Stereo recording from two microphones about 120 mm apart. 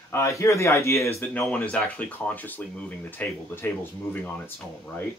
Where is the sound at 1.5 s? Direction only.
10° left (ahead or behind).